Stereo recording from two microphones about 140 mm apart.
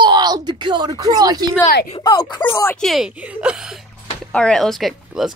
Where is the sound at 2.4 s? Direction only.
15° left (ahead or behind).